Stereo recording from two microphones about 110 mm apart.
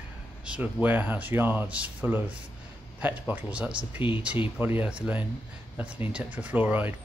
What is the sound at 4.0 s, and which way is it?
Speech, 50° left (ahead or behind).